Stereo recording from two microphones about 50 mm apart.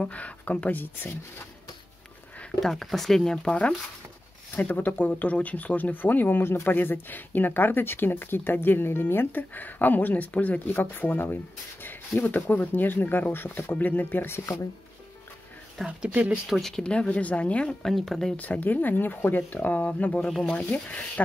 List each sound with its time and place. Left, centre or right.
0.0 s speech: left
2.6 s speech: centre
4.6 s speech: left
16.0 s speech: right
16.4 s speech: centre
16.7 s speech: centre
17.6 s speech: centre
18.3 s speech: left
20.2 s speech: centre
20.5 s speech: left